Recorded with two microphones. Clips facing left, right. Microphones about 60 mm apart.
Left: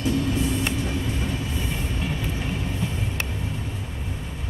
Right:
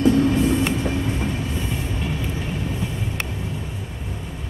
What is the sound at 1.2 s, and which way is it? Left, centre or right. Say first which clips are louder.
Train: right 3 dB; centre.